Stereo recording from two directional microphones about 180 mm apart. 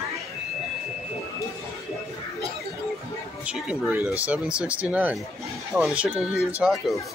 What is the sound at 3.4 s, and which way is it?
Speech, 5° right (ahead or behind).